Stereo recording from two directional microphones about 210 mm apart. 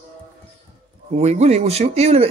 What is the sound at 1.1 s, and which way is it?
Speech, 30° right (ahead or behind).